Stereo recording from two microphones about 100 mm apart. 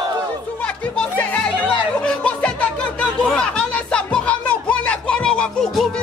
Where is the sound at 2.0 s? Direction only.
10° left (ahead or behind).